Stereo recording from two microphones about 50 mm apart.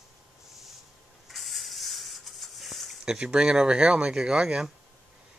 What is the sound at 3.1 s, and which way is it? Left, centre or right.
Speech, centre.